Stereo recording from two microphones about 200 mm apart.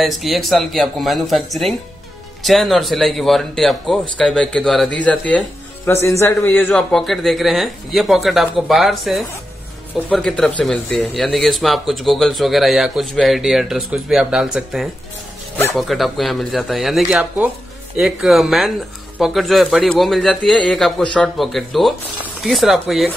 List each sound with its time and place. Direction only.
0.0 s speech: centre (ahead or behind)